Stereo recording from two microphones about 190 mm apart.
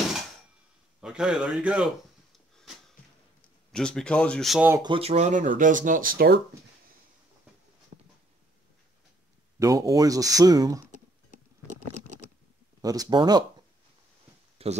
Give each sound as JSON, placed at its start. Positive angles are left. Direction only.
{"t": 1.0, "sound": "speech", "side_deg": -5}
{"t": 3.7, "sound": "speech", "side_deg": 5}
{"t": 4.6, "sound": "speech", "side_deg": -15}
{"t": 4.9, "sound": "speech", "side_deg": -35}
{"t": 9.6, "sound": "speech", "side_deg": -15}
{"t": 12.8, "sound": "speech", "side_deg": -20}
{"t": 14.6, "sound": "a sound", "side_deg": -30}